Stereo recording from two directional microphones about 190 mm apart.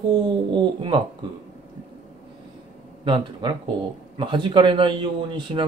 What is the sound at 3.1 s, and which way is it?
A man's voice, 25° right (ahead or behind).